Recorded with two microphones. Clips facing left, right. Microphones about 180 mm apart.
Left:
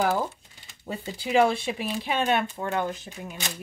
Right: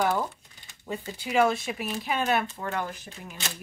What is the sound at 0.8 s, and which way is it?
Speech, 30° left (ahead or behind).